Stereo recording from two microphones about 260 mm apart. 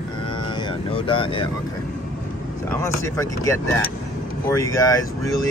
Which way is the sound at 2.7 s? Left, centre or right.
Centre.